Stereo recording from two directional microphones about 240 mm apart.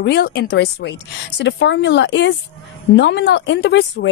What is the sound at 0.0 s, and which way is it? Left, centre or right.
A woman's voice, left.